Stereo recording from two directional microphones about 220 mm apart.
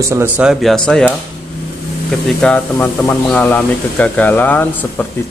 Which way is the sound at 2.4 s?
5° left (ahead or behind).